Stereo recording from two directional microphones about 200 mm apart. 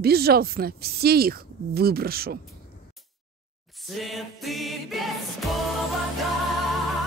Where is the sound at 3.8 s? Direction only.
Centre (ahead or behind).